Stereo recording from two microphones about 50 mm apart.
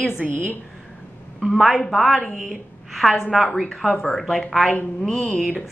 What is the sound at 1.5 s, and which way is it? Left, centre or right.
A woman's voice, centre.